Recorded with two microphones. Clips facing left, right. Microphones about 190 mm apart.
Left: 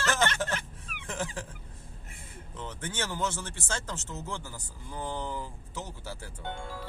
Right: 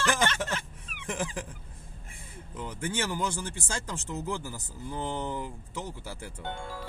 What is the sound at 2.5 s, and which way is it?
Speech, 15° right (ahead or behind).